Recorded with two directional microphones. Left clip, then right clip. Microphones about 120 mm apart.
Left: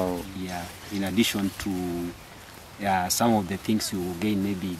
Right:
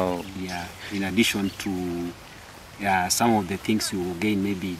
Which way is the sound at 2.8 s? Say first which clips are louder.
Right 2 dB; 5° right (ahead or behind).